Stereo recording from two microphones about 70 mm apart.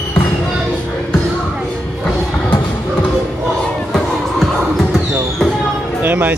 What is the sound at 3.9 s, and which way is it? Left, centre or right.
Music, centre.